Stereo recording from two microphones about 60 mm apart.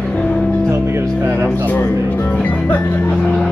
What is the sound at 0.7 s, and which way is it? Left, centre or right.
Music, right.